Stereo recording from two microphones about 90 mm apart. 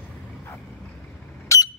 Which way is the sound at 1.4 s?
35° left (ahead or behind).